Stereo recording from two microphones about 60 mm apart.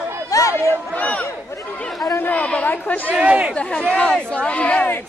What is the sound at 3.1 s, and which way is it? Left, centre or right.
Speech, right.